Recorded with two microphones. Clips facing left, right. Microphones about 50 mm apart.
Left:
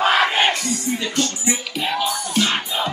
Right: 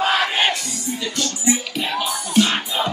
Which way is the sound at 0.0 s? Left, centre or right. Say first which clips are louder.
Left 2 dB; left.